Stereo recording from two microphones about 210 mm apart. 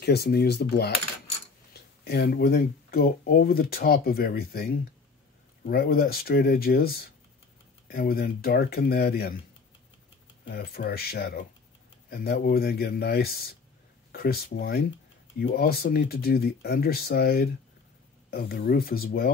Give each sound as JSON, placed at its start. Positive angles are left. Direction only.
{"t": 0.0, "sound": "speech", "side_deg": 50}
{"t": 10.4, "sound": "speech", "side_deg": 45}